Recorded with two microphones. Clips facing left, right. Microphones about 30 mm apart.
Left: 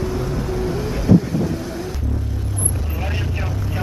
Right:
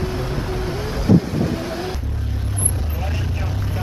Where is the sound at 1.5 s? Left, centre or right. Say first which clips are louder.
Right 1 dB; right.